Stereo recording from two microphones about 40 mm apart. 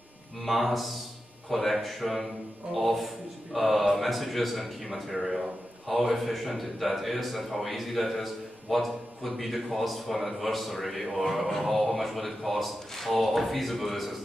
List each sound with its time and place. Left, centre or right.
0.4 s a man's voice: centre